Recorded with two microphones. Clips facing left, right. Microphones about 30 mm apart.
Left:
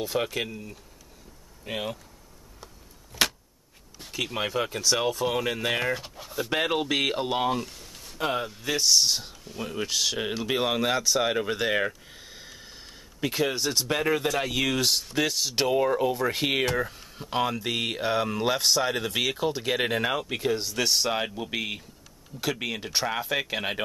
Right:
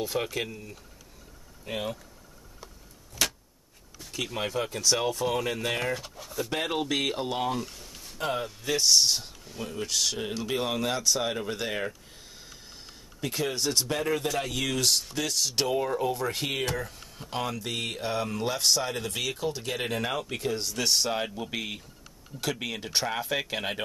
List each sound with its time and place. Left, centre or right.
0.0 s speech: centre
3.1 s a sound: left
4.1 s speech: centre
7.6 s speech: centre
9.6 s speech: centre